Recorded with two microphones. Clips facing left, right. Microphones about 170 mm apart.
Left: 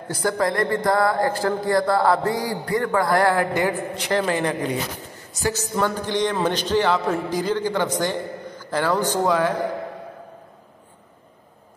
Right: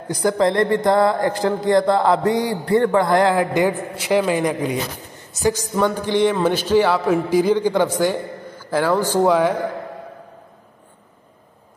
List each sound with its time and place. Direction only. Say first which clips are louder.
0.1 s a man's voice: right 5 dB; 20° right (ahead or behind)